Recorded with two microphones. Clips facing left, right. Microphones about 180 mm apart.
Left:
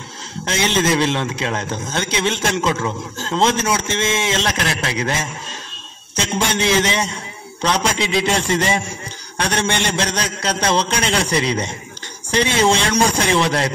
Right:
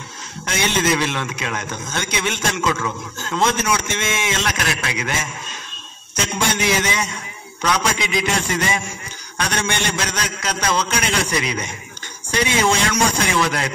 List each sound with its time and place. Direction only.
0.5 s a man's voice: 25° left (ahead or behind)